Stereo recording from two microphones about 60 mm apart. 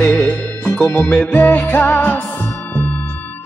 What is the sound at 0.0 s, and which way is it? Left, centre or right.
Music, left.